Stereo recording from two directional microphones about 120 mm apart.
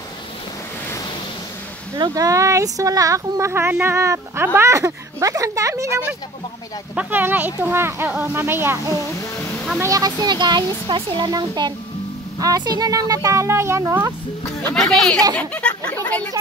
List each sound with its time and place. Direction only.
2.0 s speech: 30° right (ahead or behind)
7.0 s speech: 15° right (ahead or behind)
9.8 s speech: 30° right (ahead or behind)
14.7 s speech: 5° left (ahead or behind)
15.3 s chatter: 10° left (ahead or behind)